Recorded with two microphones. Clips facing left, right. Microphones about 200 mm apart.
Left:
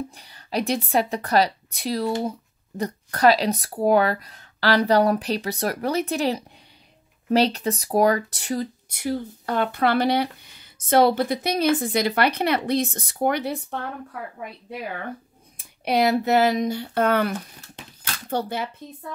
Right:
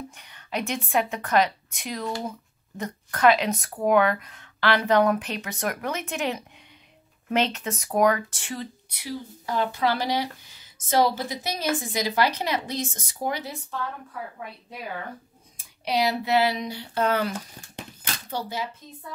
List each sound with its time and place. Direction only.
0.1 s speech: 35° left (ahead or behind); by 13.8 s 60° left (ahead or behind)
15.5 s speech: 55° left (ahead or behind)
18.3 s speech: 55° left (ahead or behind)